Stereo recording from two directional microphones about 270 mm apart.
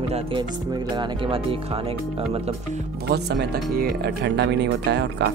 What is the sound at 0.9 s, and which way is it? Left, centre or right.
Speech, centre.